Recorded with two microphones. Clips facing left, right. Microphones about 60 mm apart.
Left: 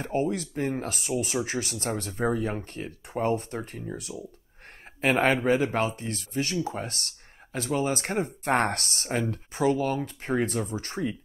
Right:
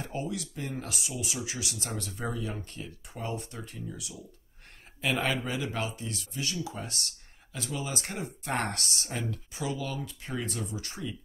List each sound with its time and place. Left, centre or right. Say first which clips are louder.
0.0 s speech: left 8 dB; left